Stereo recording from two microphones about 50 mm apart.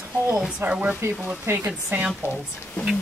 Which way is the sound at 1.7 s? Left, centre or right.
Right.